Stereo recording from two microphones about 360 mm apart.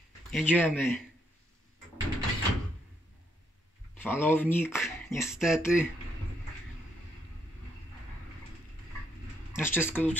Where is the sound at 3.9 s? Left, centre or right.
Centre.